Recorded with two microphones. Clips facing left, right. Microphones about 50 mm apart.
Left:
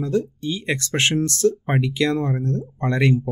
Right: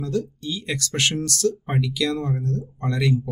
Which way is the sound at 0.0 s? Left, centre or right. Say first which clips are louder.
Left 4 dB; left.